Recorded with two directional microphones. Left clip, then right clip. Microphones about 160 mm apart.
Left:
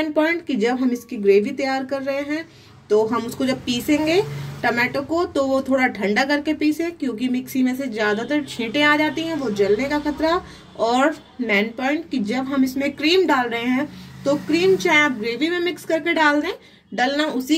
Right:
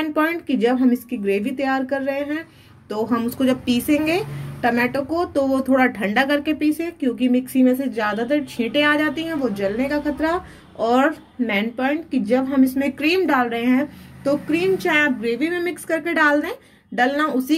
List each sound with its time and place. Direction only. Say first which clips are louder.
0.0 s a woman's voice: left 1 dB; 35° right (ahead or behind)